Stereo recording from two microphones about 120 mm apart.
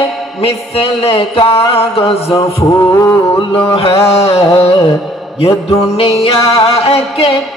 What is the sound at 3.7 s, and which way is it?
Speech, 55° left (ahead or behind).